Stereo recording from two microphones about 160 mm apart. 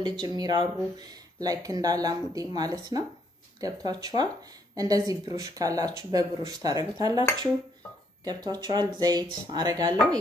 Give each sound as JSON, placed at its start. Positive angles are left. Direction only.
{"t": 0.0, "sound": "speech", "side_deg": -25}